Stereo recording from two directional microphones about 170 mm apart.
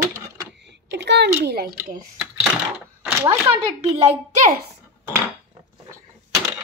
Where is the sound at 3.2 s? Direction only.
35° right (ahead or behind).